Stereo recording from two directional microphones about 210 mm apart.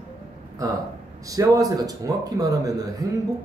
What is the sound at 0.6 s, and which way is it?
A man's voice, 15° right (ahead or behind).